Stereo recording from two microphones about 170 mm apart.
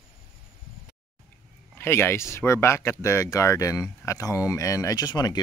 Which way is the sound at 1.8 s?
15° left (ahead or behind).